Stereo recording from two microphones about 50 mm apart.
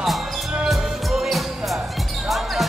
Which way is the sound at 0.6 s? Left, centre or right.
Centre.